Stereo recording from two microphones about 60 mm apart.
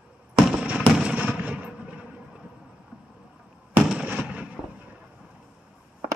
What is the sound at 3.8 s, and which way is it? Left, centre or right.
Fireworks, centre.